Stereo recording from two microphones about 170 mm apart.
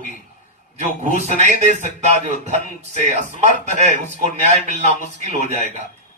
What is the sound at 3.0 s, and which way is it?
Speech, 45° right (ahead or behind).